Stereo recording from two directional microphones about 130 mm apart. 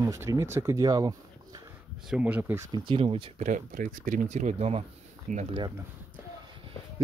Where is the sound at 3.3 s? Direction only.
70° right (ahead or behind).